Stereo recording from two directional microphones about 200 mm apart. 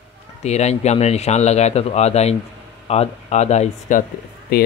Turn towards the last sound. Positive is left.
turn(degrees=50)  # may be behind; listen again after turning